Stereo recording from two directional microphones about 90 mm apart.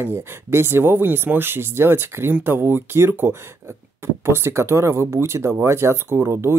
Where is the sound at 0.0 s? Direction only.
25° right (ahead or behind).